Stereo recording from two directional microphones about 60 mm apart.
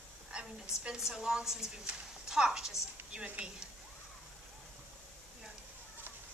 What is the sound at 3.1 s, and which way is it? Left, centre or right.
Speech, right.